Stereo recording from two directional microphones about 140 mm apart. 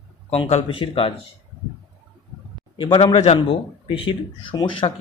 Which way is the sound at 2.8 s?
35° left (ahead or behind).